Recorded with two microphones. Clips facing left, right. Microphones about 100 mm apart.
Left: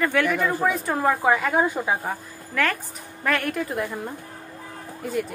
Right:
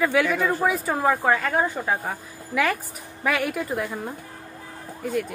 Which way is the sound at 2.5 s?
10° right (ahead or behind).